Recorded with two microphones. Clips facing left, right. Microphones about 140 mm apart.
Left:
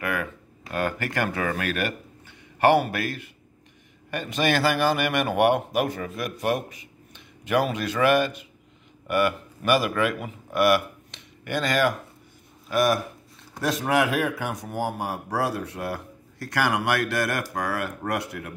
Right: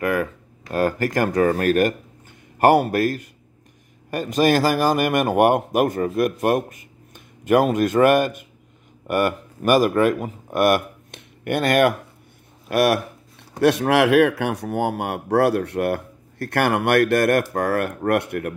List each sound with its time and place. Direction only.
0.0 s a man's voice: 40° right (ahead or behind); by 18.5 s 60° right (ahead or behind)